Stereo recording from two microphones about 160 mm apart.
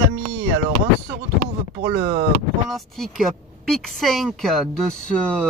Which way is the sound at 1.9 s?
45° right (ahead or behind).